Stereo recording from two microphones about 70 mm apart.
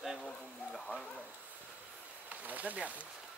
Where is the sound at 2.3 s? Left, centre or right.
Right.